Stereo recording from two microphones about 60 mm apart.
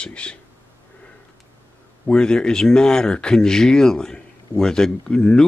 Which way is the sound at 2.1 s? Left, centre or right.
Centre.